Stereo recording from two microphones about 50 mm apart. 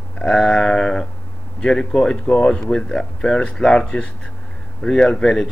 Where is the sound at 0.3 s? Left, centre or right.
Centre.